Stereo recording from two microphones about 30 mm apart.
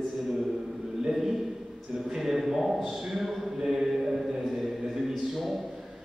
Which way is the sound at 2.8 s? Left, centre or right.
Centre.